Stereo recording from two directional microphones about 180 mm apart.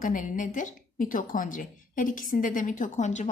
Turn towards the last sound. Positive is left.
turn(degrees=40)  # may be behind; listen again after turning